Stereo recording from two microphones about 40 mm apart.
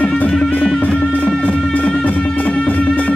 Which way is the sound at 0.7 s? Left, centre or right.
Left.